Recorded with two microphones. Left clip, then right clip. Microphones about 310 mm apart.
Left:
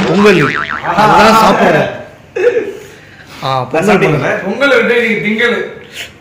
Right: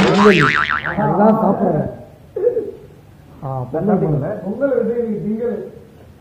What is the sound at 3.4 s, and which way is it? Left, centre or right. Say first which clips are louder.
Speech: left 11 dB; left.